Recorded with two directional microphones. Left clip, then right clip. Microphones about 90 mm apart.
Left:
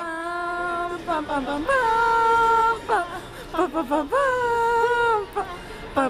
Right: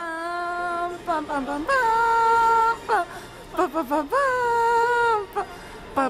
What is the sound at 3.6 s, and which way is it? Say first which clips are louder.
Speech: even; 5° right (ahead or behind).